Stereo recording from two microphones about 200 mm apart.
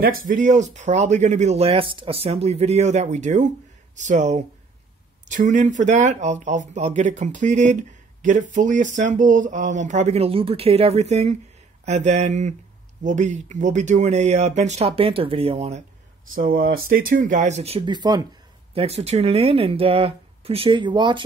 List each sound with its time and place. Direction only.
0.2 s speech: 40° right (ahead or behind)
16.3 s speech: 45° right (ahead or behind); by 18.2 s 20° right (ahead or behind)
18.8 s speech: 30° right (ahead or behind)